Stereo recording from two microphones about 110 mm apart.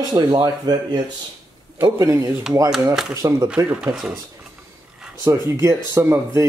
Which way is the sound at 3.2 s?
30° right (ahead or behind).